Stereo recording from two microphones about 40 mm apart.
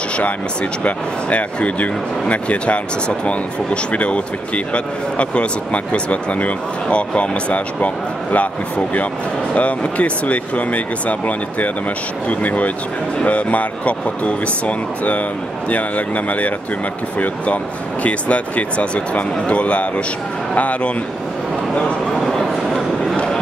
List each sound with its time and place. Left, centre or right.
0.8 s speech: left
16.3 s speech: left
18.0 s speech: left
22.1 s a sound: centre